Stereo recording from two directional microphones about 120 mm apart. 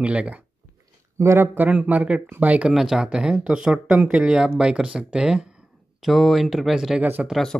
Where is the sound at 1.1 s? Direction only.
20° right (ahead or behind); by 7.0 s 5° right (ahead or behind).